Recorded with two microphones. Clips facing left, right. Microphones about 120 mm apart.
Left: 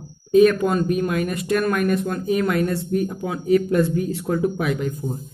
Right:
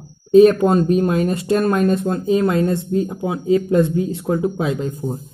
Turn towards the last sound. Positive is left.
turn(degrees=-25)  # may be behind; listen again after turning